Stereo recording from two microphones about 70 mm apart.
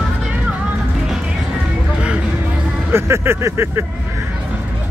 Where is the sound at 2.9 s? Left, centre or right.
Right.